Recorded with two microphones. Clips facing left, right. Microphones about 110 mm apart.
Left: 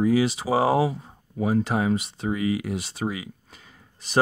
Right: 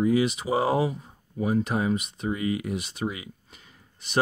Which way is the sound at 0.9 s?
30° left (ahead or behind).